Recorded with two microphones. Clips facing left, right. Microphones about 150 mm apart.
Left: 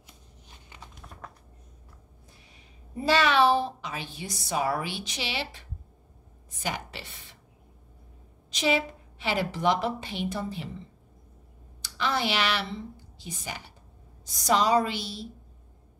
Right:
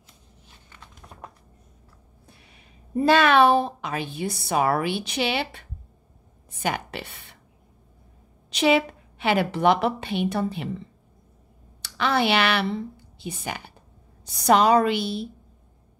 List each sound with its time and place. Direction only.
2.4 s a woman's voice: 60° right (ahead or behind)
8.5 s a woman's voice: 65° right (ahead or behind)
11.8 s a woman's voice: 65° right (ahead or behind)